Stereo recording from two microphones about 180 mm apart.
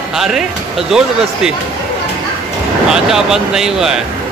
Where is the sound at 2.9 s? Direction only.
5° right (ahead or behind).